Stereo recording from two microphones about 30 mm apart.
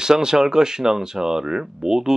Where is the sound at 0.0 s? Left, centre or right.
Right.